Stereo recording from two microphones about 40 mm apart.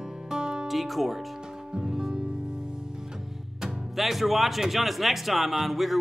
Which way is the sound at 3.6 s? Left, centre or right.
Centre.